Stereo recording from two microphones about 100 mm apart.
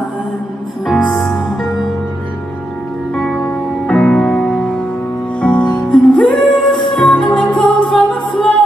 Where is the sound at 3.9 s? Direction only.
10° left (ahead or behind).